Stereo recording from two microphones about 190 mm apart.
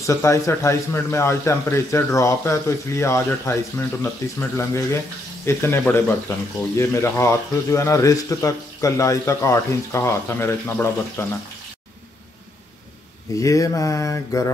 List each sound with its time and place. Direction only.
0.0 s speech: 15° left (ahead or behind)
13.4 s speech: 15° left (ahead or behind)